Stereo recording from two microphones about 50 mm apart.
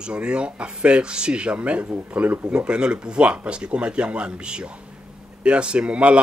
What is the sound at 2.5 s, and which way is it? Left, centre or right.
A man's voice, right.